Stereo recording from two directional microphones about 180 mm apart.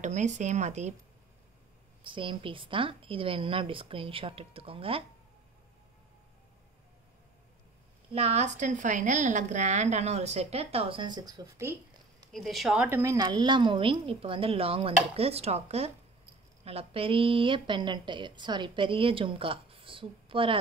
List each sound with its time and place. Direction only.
0.0 s a woman's voice: 40° right (ahead or behind)
2.0 s a woman's voice: 30° right (ahead or behind)
8.1 s a woman's voice: 35° right (ahead or behind); by 11.7 s 15° right (ahead or behind)
12.3 s a woman's voice: centre (ahead or behind); by 20.5 s 30° right (ahead or behind)